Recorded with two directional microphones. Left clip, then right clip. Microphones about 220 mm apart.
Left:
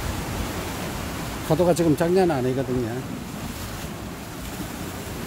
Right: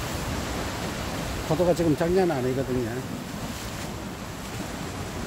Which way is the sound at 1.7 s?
25° left (ahead or behind).